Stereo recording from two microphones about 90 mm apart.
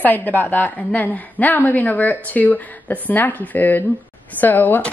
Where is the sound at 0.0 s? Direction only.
20° left (ahead or behind).